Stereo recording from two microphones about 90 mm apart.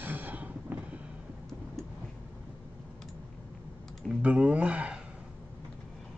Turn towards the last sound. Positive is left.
turn(degrees=-10)  # may be behind; listen again after turning